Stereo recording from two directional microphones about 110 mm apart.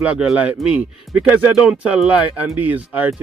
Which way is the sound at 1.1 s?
Centre (ahead or behind).